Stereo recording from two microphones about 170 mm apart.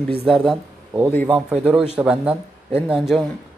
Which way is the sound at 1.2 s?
10° right (ahead or behind).